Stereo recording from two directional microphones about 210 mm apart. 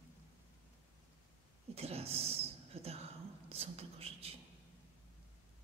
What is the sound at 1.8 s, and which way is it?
Speech, 30° right (ahead or behind).